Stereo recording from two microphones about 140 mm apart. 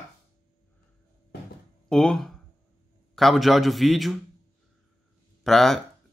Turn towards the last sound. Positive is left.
turn(degrees=0)  # may be behind; listen again after turning